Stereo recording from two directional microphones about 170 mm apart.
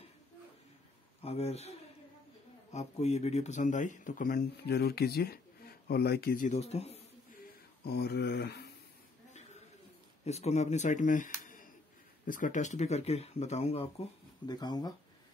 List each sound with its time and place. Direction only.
1.2 s speech: 35° left (ahead or behind)
4.6 s speech: 70° left (ahead or behind); by 7.0 s 40° left (ahead or behind)
7.8 s speech: 70° left (ahead or behind)
10.2 s speech: 40° left (ahead or behind)
14.5 s speech: 25° left (ahead or behind)